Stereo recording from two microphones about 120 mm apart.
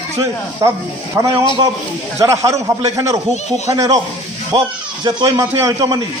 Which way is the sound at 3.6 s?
30° right (ahead or behind).